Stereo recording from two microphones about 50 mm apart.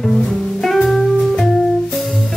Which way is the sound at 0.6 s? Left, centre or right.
Centre.